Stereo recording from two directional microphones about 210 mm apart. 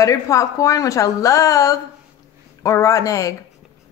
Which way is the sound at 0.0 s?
15° left (ahead or behind).